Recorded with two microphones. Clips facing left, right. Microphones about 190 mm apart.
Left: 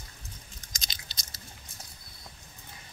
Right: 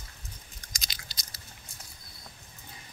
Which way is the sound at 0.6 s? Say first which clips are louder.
Even; 25° left (ahead or behind).